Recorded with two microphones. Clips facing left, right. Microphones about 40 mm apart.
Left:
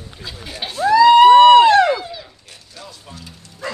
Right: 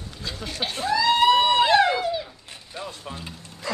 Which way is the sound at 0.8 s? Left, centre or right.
Left.